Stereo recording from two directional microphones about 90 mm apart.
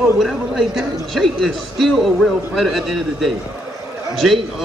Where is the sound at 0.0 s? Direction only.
5° right (ahead or behind).